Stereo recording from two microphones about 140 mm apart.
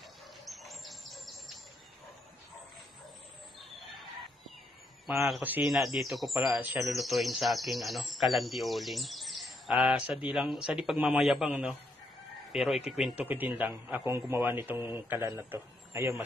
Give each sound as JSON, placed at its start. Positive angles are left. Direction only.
{"t": 0.5, "sound": "bird", "side_deg": 0}
{"t": 5.0, "sound": "a man's voice", "side_deg": 0}